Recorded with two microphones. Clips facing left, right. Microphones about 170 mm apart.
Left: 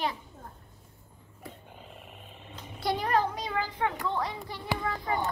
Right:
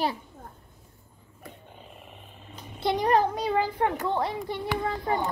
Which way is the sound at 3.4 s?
35° right (ahead or behind).